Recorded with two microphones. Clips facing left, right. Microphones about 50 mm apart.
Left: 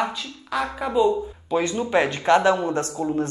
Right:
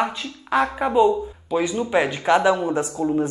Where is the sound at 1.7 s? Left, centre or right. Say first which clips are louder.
Even; centre.